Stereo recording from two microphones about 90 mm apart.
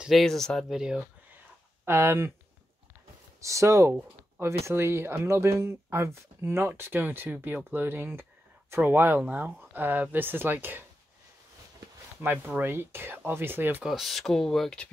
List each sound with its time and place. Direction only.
0.2 s speech: 5° left (ahead or behind)
0.7 s speech: 5° right (ahead or behind)
1.9 s speech: 25° right (ahead or behind)
3.3 s speech: 35° right (ahead or behind)
12.2 s speech: 20° right (ahead or behind)
13.8 s speech: centre (ahead or behind)